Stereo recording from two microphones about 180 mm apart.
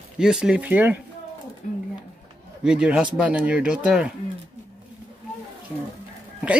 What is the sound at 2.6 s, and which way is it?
Speech, 5° right (ahead or behind).